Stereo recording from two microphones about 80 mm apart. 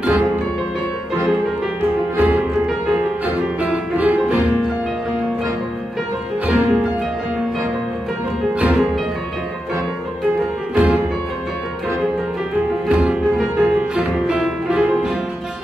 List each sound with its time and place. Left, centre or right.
0.0 s music: centre
2.1 s music: centre
6.4 s music: centre
8.5 s music: centre
10.7 s music: centre
12.8 s music: centre